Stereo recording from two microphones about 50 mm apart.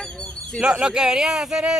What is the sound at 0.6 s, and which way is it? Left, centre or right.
Speech, centre.